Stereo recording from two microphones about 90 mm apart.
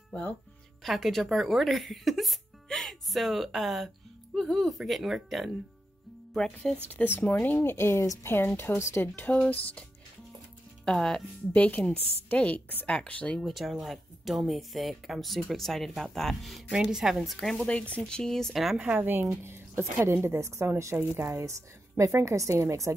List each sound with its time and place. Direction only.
0.8 s a woman's voice: centre (ahead or behind)
7.2 s speech: 20° left (ahead or behind)
10.9 s a woman's voice: 10° left (ahead or behind)
13.4 s speech: centre (ahead or behind)
16.7 s speech: 10° right (ahead or behind)
18.8 s a woman's voice: 20° right (ahead or behind)